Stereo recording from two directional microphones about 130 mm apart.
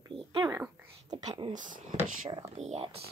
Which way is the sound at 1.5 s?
85° right.